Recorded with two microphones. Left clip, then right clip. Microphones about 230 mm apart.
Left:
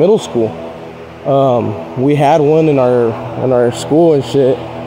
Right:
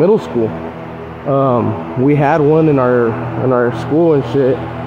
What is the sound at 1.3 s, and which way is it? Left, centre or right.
Speech, left.